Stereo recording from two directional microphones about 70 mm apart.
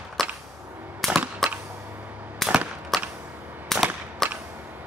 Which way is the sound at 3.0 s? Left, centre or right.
Right.